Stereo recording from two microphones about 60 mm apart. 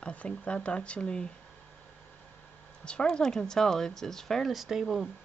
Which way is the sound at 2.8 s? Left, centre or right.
Centre.